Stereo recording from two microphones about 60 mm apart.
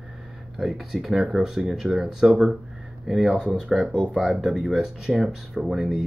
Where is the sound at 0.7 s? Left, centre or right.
Centre.